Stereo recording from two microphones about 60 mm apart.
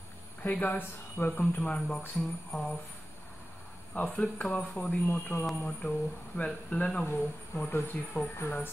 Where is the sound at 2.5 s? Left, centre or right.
Centre.